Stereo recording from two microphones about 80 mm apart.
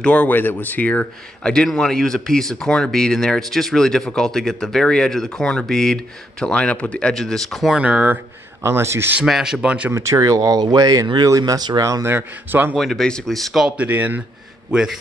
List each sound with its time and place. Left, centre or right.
0.0 s a man's voice: centre
7.7 s speech: centre
8.6 s speech: right
9.2 s speech: centre
9.8 s speech: right
11.8 s speech: right
12.1 s a man's voice: right
12.7 s speech: centre
13.7 s a man's voice: centre
14.7 s speech: centre